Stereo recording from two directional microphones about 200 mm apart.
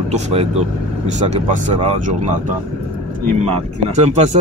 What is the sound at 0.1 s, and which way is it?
Speech, 30° right (ahead or behind).